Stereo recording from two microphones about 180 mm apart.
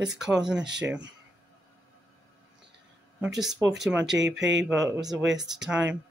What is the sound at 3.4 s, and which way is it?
Speech, 20° right (ahead or behind).